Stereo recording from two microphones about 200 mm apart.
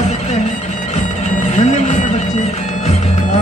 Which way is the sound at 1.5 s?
35° left (ahead or behind).